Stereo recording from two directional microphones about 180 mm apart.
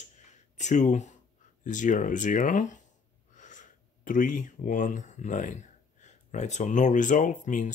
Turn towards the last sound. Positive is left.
turn(degrees=45)  # may be behind; listen again after turning